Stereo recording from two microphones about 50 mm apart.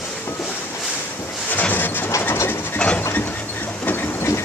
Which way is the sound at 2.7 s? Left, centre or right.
Left.